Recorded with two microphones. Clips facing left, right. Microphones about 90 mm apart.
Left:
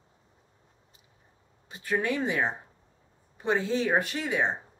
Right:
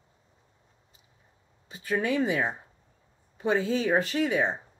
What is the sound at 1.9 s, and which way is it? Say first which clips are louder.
Speech: right 2 dB; 20° left (ahead or behind).